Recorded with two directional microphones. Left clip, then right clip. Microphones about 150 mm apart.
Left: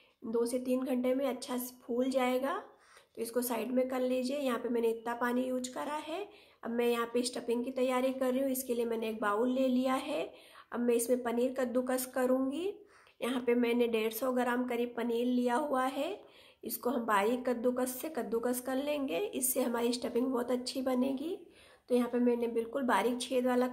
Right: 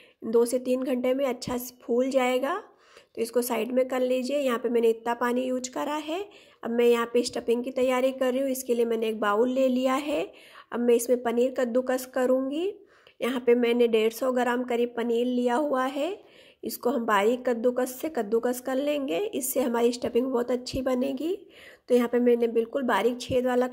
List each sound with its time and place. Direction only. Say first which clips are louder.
0.3 s a woman's voice: right 9 dB; 50° right (ahead or behind)